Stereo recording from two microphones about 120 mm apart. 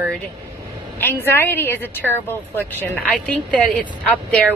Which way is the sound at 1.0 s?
20° left (ahead or behind).